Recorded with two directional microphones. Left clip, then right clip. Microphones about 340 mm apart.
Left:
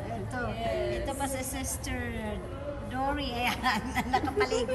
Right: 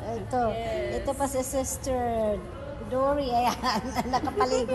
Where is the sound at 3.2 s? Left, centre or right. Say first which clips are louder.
Right 6 dB; centre.